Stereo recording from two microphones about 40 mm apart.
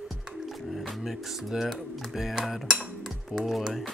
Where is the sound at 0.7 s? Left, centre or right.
Centre.